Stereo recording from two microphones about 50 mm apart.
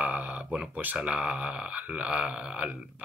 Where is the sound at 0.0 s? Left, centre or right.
Right.